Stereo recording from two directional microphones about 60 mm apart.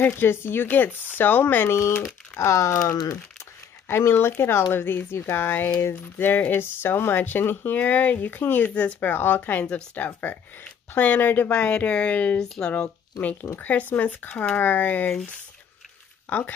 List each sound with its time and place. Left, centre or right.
0.0 s speech: left
2.3 s speech: left
3.9 s speech: left
12.4 s speech: centre
13.2 s speech: left
16.3 s speech: left